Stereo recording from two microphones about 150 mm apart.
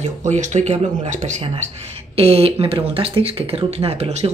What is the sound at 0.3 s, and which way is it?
Speech, 50° right (ahead or behind).